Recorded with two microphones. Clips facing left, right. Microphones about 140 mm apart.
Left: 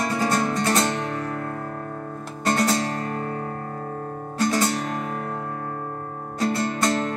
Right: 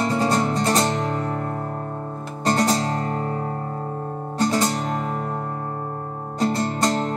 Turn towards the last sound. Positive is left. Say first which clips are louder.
# right 2 dB
turn(degrees=-30)  # may be behind; listen again after turning